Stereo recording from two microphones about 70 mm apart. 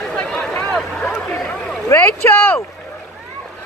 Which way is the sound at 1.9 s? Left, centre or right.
Left.